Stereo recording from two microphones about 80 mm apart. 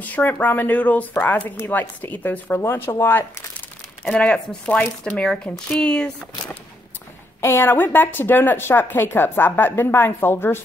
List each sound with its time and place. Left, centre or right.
0.0 s speech: left
4.0 s speech: centre
7.4 s speech: left